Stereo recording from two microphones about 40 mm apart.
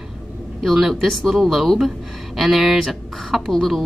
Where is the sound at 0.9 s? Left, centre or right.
Centre.